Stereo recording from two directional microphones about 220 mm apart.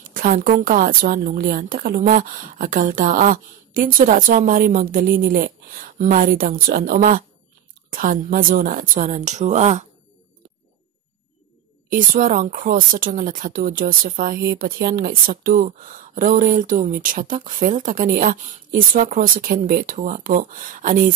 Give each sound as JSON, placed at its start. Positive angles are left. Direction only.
{"t": 0.1, "sound": "speech", "side_deg": -40}
{"t": 11.9, "sound": "speech", "side_deg": -35}